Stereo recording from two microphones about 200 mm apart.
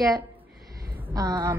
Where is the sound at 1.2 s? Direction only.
20° right (ahead or behind).